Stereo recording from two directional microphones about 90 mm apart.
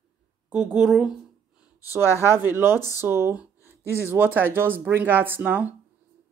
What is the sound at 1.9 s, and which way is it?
Speech, 25° right (ahead or behind).